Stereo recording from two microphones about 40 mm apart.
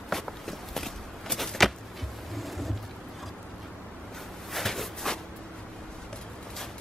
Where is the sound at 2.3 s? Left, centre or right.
Centre.